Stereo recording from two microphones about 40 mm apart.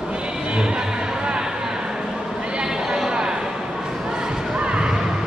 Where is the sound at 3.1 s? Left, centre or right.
Centre.